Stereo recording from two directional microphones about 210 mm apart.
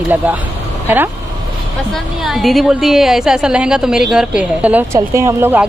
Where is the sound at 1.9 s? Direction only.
Centre (ahead or behind).